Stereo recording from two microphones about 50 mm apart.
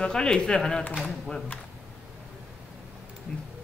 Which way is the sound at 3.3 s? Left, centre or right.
Left.